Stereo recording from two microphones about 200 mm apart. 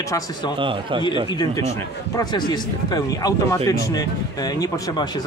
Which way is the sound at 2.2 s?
20° left (ahead or behind).